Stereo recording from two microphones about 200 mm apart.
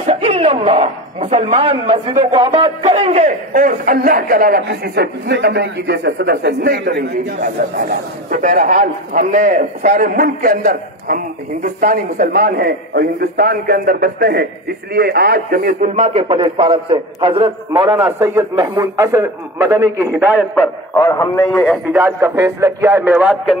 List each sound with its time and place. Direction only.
0.0 s speech: 30° right (ahead or behind); by 7.1 s 55° right (ahead or behind)
7.9 s a man's voice: 40° right (ahead or behind); by 18.0 s 25° right (ahead or behind)
18.0 s a man's voice: 15° right (ahead or behind)
20.9 s a man's voice: 15° left (ahead or behind)
21.5 s a man's voice: centre (ahead or behind)
21.9 s a man's voice: 10° right (ahead or behind)